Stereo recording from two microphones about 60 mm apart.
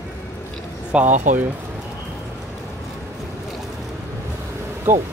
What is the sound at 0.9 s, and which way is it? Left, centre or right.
Speech, centre.